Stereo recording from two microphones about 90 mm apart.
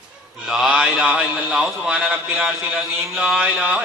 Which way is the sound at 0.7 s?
15° right (ahead or behind).